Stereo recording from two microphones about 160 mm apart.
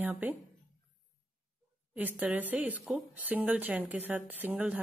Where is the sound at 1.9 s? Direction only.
10° right (ahead or behind).